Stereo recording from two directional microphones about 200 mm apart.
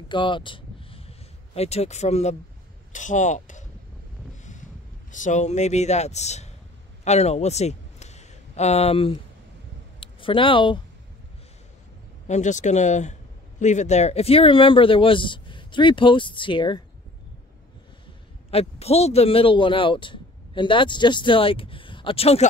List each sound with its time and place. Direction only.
0.1 s a sound: 25° left (ahead or behind)
1.5 s speech: 30° left (ahead or behind)
5.1 s a man's voice: 40° left (ahead or behind)
12.3 s speech: 35° left (ahead or behind)
18.5 s speech: 30° left (ahead or behind)